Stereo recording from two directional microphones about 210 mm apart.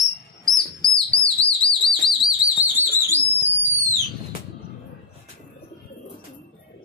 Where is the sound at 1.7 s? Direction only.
Centre (ahead or behind).